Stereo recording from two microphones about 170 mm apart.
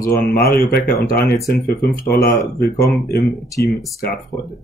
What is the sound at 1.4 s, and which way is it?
Speech, 20° left (ahead or behind).